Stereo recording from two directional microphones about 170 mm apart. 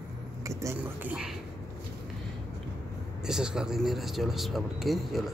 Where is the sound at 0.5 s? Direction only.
15° right (ahead or behind).